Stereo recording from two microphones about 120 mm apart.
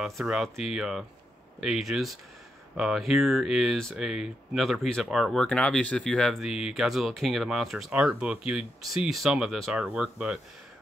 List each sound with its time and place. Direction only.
0.0 s speech: 5° right (ahead or behind)